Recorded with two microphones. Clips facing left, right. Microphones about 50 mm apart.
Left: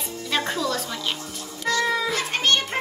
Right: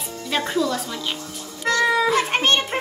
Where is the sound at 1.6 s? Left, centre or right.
Right.